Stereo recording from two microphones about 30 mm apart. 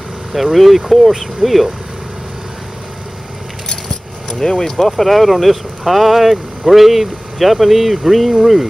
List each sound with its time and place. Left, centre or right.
0.3 s speech: centre
4.4 s speech: centre
4.8 s speech: centre